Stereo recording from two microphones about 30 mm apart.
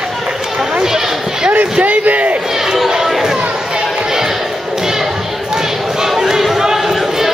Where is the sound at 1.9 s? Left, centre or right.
Right.